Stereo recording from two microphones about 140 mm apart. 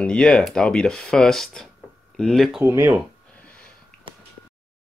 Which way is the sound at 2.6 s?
20° right (ahead or behind).